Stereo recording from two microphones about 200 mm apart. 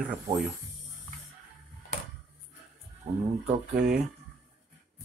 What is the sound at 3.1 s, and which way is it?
Speech, 30° right (ahead or behind).